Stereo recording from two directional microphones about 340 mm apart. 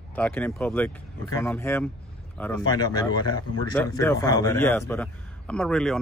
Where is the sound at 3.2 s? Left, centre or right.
Left.